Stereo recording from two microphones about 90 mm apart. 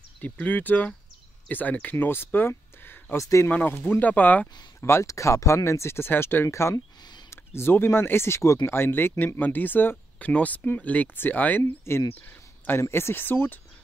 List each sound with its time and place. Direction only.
0.2 s speech: 20° left (ahead or behind)
3.2 s speech: 35° left (ahead or behind)
3.4 s speech: 20° left (ahead or behind)
4.7 s speech: 30° left (ahead or behind)
12.2 s a sound: 20° left (ahead or behind)
12.9 s speech: 25° left (ahead or behind)